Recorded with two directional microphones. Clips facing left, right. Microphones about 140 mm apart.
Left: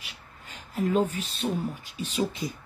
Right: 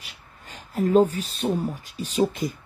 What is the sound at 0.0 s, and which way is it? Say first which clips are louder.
Speech: even; 35° right (ahead or behind).